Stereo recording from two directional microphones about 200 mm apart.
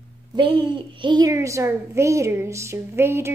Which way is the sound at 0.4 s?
20° right (ahead or behind).